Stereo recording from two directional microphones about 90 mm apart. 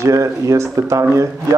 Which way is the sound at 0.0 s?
35° right (ahead or behind).